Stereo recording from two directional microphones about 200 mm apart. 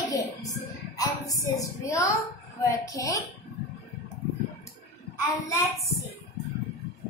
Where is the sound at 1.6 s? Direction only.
15° left (ahead or behind).